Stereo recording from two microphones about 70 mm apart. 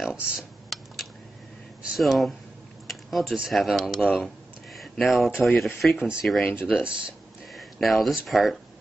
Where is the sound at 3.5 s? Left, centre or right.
Centre.